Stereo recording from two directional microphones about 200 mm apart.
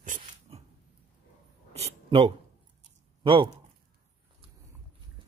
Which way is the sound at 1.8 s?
30° right (ahead or behind).